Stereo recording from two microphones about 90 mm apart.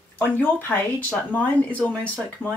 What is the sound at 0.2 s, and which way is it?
Speech, 20° left (ahead or behind).